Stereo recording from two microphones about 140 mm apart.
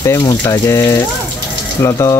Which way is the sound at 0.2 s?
25° left (ahead or behind).